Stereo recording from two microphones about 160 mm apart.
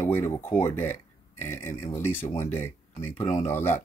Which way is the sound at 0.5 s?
15° left (ahead or behind).